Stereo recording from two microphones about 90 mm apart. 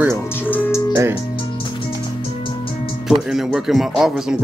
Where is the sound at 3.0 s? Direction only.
5° right (ahead or behind).